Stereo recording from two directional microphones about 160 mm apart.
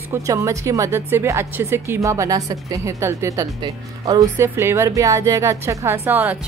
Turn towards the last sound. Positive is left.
turn(degrees=-10)  # may be behind; listen again after turning